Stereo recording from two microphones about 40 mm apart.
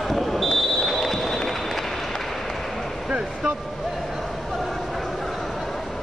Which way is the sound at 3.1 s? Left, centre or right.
Right.